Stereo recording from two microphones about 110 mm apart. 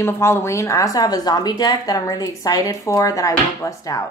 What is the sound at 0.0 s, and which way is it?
A woman's voice, 25° left (ahead or behind).